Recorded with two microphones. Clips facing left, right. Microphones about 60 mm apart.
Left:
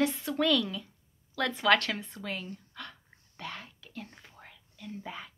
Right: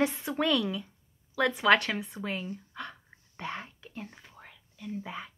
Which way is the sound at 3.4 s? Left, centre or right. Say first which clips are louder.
Right 4 dB; right.